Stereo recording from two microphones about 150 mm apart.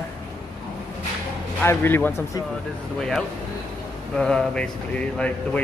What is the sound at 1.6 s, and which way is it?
Speech, 15° left (ahead or behind).